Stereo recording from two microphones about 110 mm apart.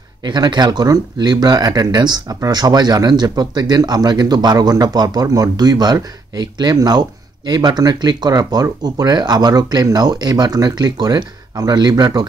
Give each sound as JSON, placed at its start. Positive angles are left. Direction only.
{"t": 0.3, "sound": "speech", "side_deg": -40}